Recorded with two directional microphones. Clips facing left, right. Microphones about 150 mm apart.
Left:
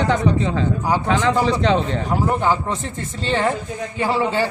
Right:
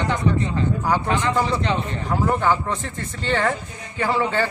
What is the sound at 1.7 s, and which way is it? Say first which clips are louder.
A man's voice: left 4 dB; 20° left (ahead or behind).